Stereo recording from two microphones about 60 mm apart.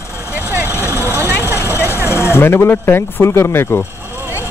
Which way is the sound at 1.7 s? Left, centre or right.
Left.